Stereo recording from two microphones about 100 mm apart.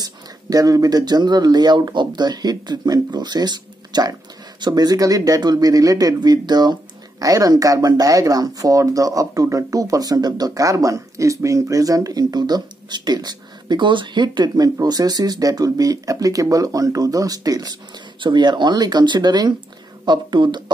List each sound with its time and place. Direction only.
0.0 s speech: 40° right (ahead or behind)
18.2 s speech: 50° right (ahead or behind)